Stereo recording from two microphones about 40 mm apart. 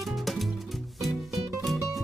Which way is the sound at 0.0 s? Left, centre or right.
Centre.